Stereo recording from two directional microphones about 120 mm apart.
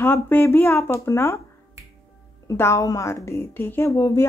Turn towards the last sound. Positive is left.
turn(degrees=25)  # may be behind; listen again after turning